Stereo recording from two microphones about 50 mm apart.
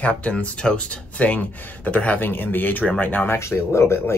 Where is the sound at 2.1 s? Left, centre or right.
Left.